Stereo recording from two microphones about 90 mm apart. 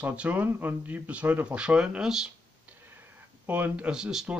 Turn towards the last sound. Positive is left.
turn(degrees=-5)  # may be behind; listen again after turning